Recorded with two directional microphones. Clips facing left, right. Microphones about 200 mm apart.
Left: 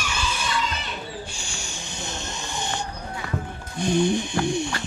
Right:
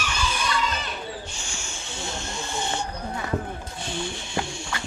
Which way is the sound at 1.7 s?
20° left (ahead or behind).